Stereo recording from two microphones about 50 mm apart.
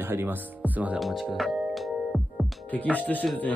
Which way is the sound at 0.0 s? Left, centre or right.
Right.